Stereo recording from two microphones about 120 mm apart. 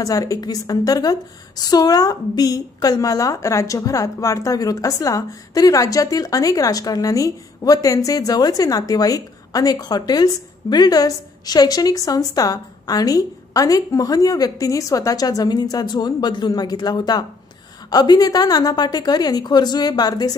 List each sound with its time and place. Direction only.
0.0 s a woman's voice: 30° left (ahead or behind)